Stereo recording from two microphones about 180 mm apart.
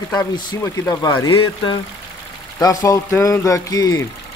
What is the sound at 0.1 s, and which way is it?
Speech, 20° left (ahead or behind).